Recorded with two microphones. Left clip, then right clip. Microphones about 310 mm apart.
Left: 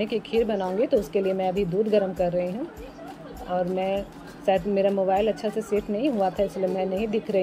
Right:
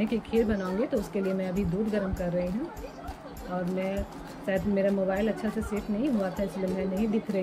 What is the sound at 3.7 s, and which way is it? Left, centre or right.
A woman's voice, centre.